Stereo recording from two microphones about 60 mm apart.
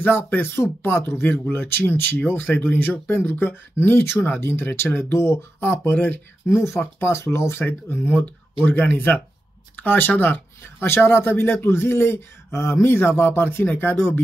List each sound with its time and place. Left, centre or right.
0.0 s speech: left
5.9 s speech: left
6.5 s speech: left